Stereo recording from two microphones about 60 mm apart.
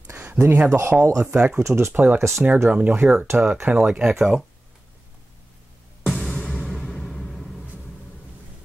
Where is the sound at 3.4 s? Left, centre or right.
Right.